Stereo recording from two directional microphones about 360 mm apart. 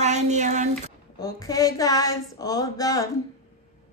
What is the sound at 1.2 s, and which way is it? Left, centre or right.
Speech, centre.